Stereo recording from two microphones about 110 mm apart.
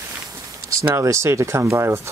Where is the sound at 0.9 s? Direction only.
25° right (ahead or behind).